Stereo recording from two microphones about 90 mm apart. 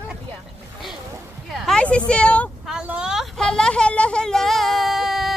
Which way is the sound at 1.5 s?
10° left (ahead or behind).